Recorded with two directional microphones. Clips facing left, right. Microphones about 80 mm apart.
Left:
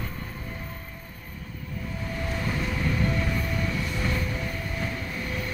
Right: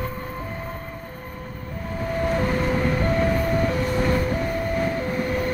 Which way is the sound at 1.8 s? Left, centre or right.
Right.